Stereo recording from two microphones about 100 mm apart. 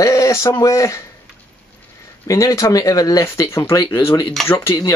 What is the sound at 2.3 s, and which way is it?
Speech, 35° left (ahead or behind).